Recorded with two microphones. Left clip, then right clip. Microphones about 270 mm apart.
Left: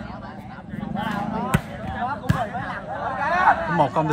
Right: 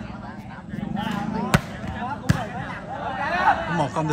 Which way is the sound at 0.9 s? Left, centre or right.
Centre.